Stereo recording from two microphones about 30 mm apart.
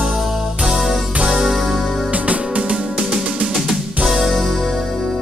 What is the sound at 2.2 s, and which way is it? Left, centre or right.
Music, right.